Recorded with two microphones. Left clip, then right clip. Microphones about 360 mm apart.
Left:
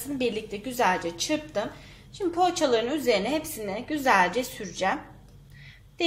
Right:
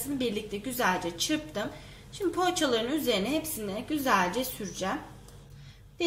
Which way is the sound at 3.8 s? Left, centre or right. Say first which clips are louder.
Left 5 dB; centre.